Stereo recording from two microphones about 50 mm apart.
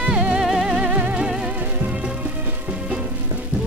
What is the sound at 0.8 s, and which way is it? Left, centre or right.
Music, right.